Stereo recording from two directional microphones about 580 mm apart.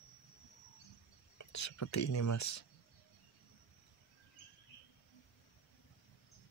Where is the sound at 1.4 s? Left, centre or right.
Left.